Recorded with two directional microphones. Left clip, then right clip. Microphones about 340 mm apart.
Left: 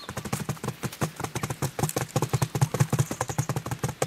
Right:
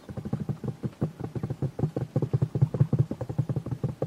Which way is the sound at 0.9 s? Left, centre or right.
Centre.